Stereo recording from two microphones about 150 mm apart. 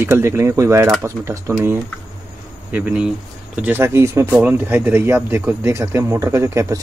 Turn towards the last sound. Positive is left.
turn(degrees=-20)  # may be behind; listen again after turning